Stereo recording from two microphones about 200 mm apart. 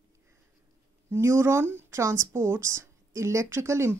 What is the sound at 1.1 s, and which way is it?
Speech, 15° right (ahead or behind).